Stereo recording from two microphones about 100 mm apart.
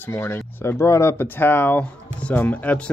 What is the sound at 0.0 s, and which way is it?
Speech, 25° left (ahead or behind).